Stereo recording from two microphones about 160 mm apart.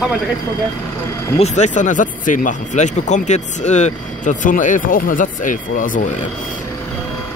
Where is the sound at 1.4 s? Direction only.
45° left (ahead or behind).